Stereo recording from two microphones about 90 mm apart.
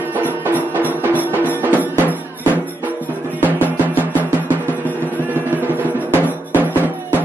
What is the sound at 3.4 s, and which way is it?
Music, 20° right (ahead or behind).